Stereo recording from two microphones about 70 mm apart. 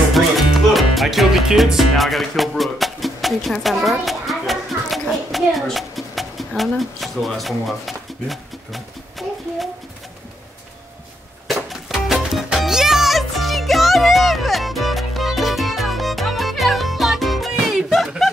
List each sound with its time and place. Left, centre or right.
0.1 s music: centre
3.6 s a child's voice: centre
9.2 s a sound: centre
11.4 s music: centre